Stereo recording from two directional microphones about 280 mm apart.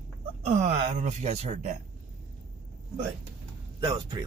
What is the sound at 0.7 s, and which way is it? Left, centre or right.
Speech, right.